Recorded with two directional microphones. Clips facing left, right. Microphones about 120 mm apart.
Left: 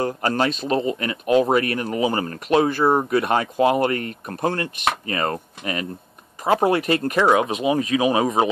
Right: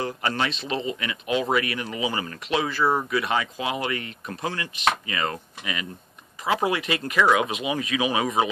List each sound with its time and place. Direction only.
0.0 s speech: 40° left (ahead or behind)
2.8 s speech: 30° left (ahead or behind)
3.1 s speech: 45° left (ahead or behind)